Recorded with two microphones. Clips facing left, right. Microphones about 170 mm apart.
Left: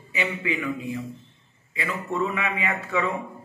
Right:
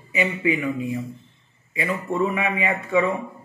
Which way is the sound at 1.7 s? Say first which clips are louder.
Right 4 dB; 30° right (ahead or behind).